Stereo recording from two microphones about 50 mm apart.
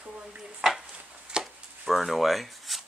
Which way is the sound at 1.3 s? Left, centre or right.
Centre.